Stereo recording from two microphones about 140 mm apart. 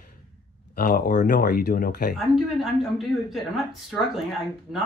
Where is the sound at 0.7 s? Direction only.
85° left.